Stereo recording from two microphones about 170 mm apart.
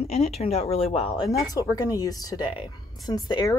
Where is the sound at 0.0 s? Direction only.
40° left (ahead or behind).